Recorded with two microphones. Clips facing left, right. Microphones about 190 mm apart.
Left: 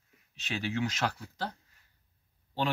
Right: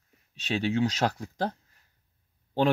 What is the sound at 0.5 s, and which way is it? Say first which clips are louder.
Speech: right 6 dB; 35° right (ahead or behind).